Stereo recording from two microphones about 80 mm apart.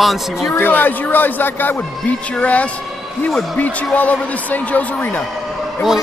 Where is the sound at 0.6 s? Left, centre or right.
Left.